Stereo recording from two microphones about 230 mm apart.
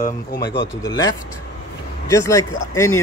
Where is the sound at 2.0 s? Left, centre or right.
Centre.